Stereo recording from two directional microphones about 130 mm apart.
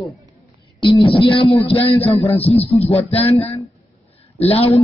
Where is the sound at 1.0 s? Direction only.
40° left (ahead or behind).